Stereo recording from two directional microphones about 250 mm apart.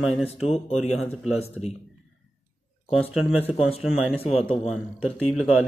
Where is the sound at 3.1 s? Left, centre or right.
Centre.